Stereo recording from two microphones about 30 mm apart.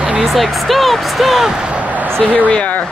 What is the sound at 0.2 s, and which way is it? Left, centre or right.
Speech, centre.